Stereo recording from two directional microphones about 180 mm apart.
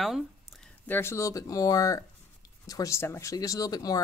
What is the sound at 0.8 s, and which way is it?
Speech, 10° left (ahead or behind).